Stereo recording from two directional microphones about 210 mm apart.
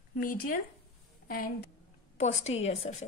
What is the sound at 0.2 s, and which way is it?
Speech, 40° left (ahead or behind).